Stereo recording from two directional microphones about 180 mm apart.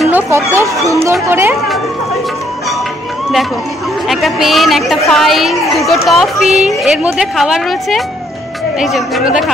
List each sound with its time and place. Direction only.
0.3 s speech: 15° right (ahead or behind)
4.1 s a woman's voice: centre (ahead or behind)